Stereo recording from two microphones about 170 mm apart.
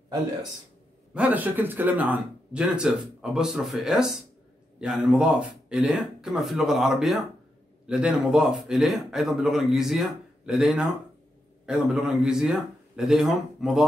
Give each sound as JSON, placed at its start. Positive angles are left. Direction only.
{"t": 1.1, "sound": "speech", "side_deg": -10}